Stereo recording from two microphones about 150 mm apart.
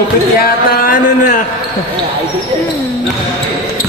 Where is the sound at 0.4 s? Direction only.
70° left (ahead or behind).